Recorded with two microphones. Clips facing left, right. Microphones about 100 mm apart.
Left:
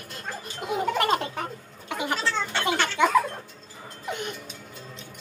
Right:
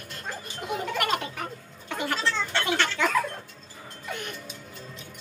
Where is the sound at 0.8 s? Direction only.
30° left (ahead or behind).